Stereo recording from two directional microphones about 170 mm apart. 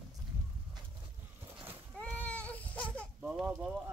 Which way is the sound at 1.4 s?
15° right (ahead or behind).